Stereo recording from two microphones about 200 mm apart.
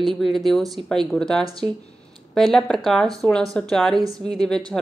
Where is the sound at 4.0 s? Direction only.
20° right (ahead or behind).